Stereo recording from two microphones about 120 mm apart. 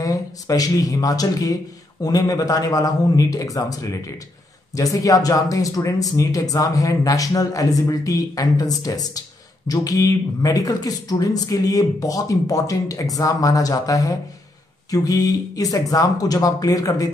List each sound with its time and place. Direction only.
0.0 s speech: 30° left (ahead or behind)